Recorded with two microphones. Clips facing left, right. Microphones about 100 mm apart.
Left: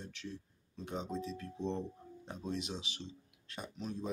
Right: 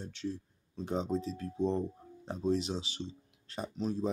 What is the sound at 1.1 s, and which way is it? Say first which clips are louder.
Speech: right 6 dB; 35° right (ahead or behind).